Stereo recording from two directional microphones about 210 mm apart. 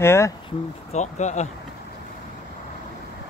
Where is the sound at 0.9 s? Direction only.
35° left (ahead or behind).